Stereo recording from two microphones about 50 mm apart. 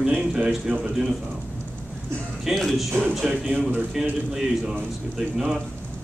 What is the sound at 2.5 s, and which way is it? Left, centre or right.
Speech, centre.